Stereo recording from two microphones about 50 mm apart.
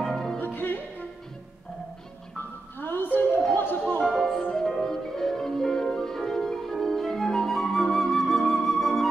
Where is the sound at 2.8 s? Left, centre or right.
Left.